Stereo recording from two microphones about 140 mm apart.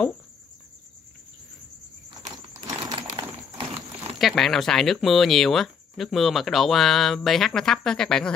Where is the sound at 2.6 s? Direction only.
30° right (ahead or behind).